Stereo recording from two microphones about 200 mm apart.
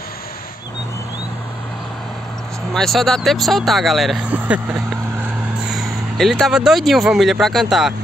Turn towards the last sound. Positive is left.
turn(degrees=0)  # may be behind; listen again after turning